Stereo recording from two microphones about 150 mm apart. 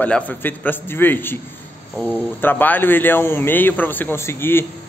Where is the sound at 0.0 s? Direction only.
10° left (ahead or behind).